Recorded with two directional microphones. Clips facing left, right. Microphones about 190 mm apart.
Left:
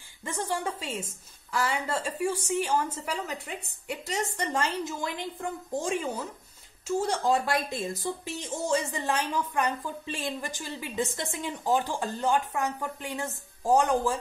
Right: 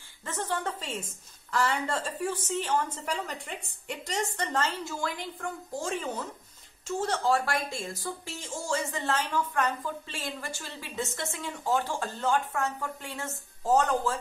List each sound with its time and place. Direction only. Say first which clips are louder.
0.2 s a woman's voice: left 1 dB; 10° left (ahead or behind)